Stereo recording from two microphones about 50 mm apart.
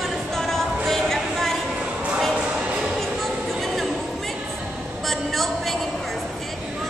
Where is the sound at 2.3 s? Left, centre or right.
Centre.